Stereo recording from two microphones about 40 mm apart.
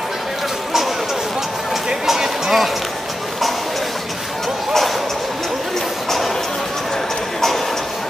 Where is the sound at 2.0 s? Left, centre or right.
Centre.